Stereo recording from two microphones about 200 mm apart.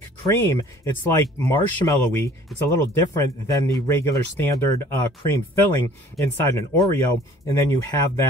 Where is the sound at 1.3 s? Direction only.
15° left (ahead or behind).